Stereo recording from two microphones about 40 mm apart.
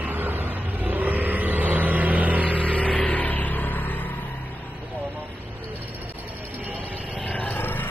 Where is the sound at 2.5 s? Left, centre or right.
Left.